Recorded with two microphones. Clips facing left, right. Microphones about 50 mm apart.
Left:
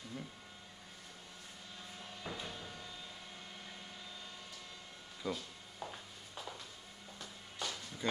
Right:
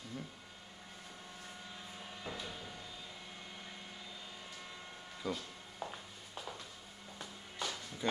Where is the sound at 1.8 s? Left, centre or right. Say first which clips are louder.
Right 1 dB; centre.